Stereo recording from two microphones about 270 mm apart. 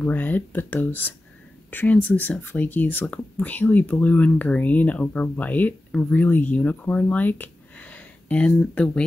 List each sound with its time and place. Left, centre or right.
0.0 s speech: centre